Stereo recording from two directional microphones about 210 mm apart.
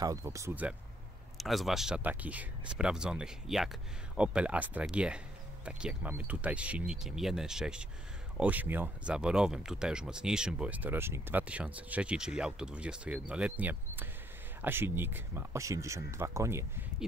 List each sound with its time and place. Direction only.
0.0 s speech: 15° right (ahead or behind)